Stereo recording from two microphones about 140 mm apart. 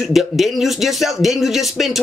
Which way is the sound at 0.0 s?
Centre (ahead or behind).